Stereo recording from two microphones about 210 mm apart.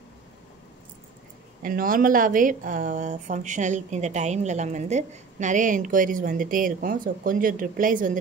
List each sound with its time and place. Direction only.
1.6 s a woman's voice: 40° right (ahead or behind)